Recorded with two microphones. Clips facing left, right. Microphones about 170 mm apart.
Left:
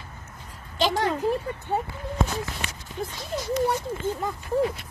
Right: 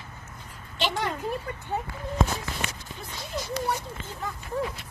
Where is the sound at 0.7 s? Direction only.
40° left (ahead or behind).